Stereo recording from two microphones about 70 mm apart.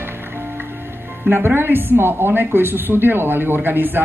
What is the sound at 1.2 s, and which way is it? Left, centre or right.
A woman's voice, right.